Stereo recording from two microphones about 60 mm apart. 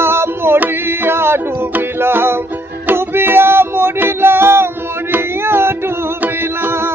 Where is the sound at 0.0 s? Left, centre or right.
Right.